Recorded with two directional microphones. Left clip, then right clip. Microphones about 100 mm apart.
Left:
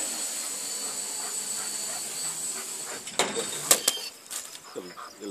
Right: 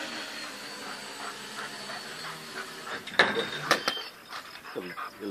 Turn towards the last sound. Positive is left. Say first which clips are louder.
# even
turn(degrees=65)  # may be behind; listen again after turning